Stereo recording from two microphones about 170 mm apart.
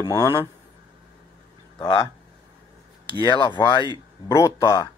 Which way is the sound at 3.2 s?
25° left (ahead or behind).